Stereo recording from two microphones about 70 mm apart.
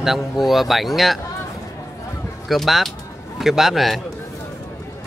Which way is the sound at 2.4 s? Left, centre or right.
Centre.